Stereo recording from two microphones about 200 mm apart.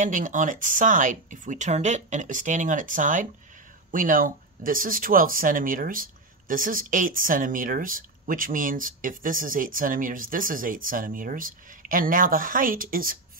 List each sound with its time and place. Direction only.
0.0 s speech: 40° right (ahead or behind)